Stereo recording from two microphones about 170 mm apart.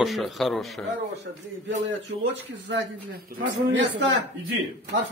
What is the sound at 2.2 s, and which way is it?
Speech, 90° right.